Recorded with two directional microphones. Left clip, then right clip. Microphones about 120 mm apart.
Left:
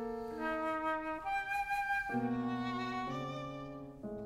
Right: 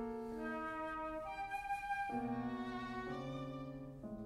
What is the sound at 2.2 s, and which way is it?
Music, 55° left (ahead or behind).